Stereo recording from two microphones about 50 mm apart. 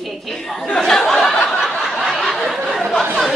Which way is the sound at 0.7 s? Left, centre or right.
Centre.